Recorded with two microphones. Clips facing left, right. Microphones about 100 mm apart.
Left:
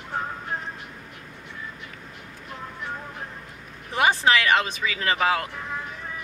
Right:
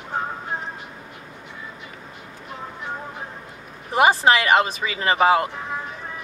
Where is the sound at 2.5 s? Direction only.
5° right (ahead or behind).